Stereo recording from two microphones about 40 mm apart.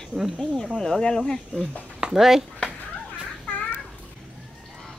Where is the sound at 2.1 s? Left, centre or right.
Centre.